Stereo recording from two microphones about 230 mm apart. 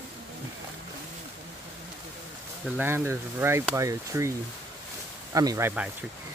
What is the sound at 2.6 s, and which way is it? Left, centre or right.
Speech, centre.